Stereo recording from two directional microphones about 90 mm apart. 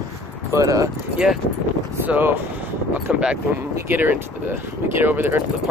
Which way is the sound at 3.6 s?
25° right (ahead or behind).